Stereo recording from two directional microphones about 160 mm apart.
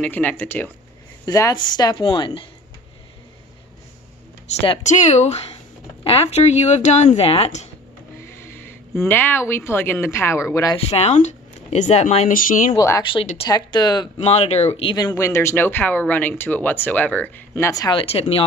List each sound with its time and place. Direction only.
0.0 s speech: 10° left (ahead or behind)
1.2 s a woman's voice: 25° left (ahead or behind)
4.8 s speech: 50° left (ahead or behind)
8.4 s speech: 15° left (ahead or behind)
10.9 s speech: 40° left (ahead or behind)
12.3 s speech: 60° left (ahead or behind)
12.7 s a woman's voice: 20° left (ahead or behind)
14.1 s speech: 40° left (ahead or behind)
15.0 s speech: 20° left (ahead or behind)
17.9 s speech: 35° left (ahead or behind)